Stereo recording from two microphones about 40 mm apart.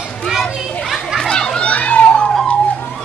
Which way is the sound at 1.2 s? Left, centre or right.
Centre.